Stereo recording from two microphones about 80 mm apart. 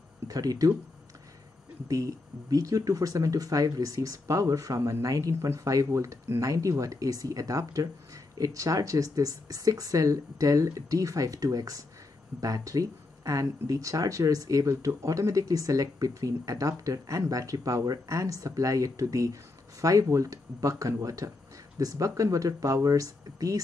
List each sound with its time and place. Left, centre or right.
0.3 s speech: right
2.5 s speech: right